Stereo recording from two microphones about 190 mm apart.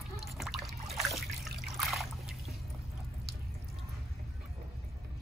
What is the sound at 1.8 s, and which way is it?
Trickle, centre (ahead or behind).